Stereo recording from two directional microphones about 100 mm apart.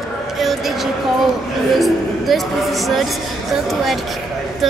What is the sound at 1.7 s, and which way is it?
Speech, centre (ahead or behind).